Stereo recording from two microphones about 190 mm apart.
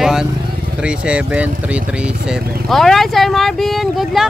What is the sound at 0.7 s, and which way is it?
Speech, 5° right (ahead or behind).